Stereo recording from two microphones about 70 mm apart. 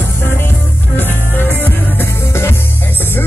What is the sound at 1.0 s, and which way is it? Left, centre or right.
Music, left.